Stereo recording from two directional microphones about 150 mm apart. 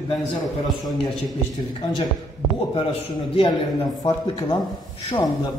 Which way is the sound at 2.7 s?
40° left (ahead or behind).